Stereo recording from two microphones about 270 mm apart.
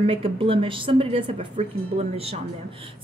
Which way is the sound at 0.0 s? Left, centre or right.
Right.